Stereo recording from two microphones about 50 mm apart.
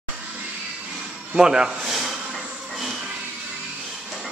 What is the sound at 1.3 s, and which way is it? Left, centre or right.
Speech, centre.